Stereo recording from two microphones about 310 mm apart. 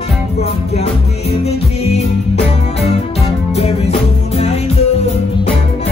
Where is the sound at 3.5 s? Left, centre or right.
Centre.